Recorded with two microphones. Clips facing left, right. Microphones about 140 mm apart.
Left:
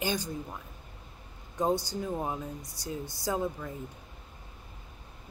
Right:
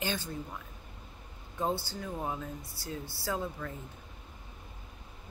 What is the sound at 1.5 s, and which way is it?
Speech, 15° left (ahead or behind).